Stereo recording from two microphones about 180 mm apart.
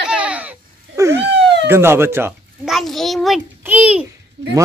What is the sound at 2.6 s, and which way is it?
A child's voice, centre (ahead or behind).